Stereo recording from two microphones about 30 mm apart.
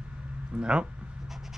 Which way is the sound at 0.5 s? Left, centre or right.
Right.